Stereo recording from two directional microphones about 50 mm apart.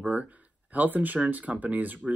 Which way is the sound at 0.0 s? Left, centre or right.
Right.